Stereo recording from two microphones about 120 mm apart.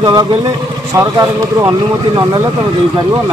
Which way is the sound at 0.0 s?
35° right (ahead or behind).